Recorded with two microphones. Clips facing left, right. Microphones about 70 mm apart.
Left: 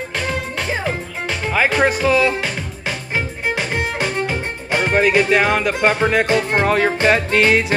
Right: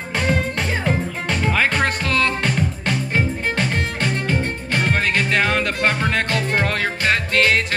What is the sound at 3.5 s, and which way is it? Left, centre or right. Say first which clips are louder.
Music: left 1 dB; centre.